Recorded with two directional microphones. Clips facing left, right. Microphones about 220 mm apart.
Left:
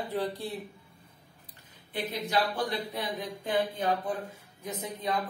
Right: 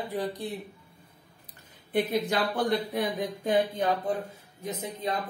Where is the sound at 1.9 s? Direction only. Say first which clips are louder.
Right 6 dB; 55° right (ahead or behind).